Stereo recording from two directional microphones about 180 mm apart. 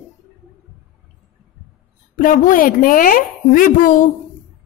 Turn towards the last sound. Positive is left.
turn(degrees=50)  # may be behind; listen again after turning